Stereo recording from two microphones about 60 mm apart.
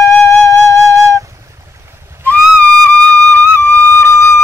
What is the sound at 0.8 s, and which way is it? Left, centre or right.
Flute, right.